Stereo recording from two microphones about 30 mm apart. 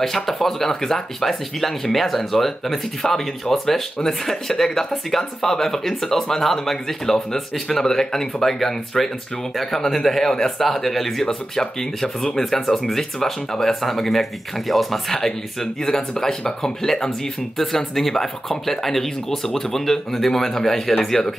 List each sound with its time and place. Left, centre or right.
0.0 s speech: centre
15.0 s speech: centre
17.6 s speech: centre